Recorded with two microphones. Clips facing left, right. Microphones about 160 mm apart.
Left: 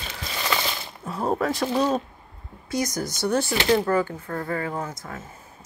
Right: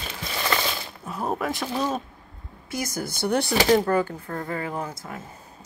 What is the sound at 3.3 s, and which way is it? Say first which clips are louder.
A woman's voice: right 2 dB; 35° right (ahead or behind).